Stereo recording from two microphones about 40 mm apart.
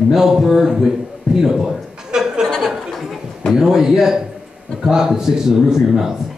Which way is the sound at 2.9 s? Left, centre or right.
Centre.